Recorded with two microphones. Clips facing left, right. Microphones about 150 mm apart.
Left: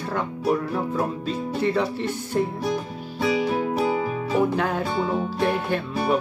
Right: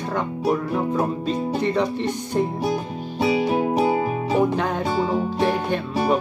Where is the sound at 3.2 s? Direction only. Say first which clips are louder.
Right 3 dB; 20° right (ahead or behind).